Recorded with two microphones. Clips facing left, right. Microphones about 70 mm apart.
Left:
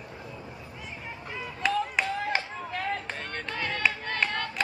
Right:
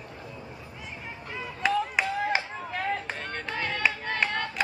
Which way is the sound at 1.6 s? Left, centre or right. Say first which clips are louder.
Right 2 dB; centre.